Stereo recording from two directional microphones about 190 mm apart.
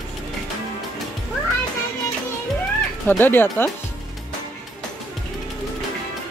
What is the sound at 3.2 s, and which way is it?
Speech, 10° left (ahead or behind).